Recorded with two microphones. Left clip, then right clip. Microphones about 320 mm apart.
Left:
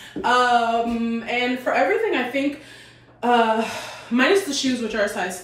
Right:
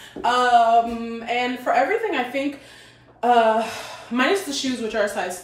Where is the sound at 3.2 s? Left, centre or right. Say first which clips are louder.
Right 2 dB; centre.